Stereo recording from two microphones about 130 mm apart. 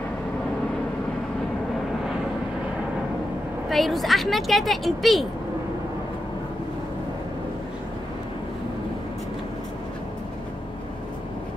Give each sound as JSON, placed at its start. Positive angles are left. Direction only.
{"t": 3.6, "sound": "a woman's voice", "side_deg": 0}